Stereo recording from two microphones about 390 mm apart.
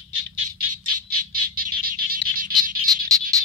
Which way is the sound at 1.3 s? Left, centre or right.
Right.